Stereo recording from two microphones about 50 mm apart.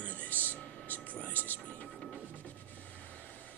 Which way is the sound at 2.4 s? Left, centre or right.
Left.